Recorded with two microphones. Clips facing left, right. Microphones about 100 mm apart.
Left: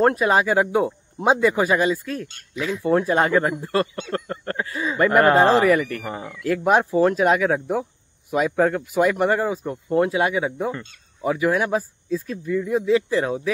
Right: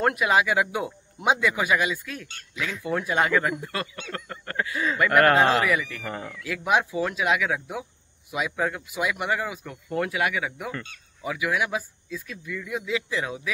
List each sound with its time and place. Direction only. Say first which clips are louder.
0.0 s speech: left 4 dB; 35° left (ahead or behind); by 6.0 s 50° left (ahead or behind)
6.0 s speech: left 3 dB; 15° left (ahead or behind)
6.4 s speech: left 6 dB; 45° left (ahead or behind)